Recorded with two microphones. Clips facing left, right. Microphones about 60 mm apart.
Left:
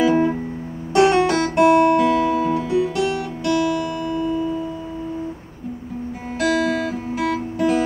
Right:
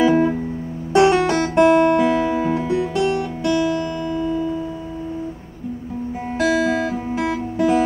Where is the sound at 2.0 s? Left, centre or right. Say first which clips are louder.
Even; centre.